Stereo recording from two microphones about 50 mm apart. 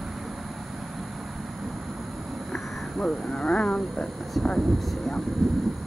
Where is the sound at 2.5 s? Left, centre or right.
Centre.